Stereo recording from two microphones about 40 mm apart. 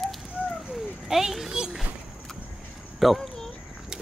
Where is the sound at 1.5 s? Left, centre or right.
Centre.